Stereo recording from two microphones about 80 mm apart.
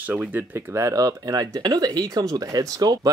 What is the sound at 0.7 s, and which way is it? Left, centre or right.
Speech, right.